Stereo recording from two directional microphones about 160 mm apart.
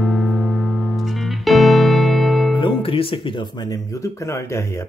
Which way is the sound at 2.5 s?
35° left (ahead or behind).